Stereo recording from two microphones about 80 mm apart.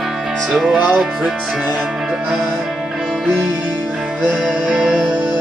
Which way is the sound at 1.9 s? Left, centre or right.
Centre.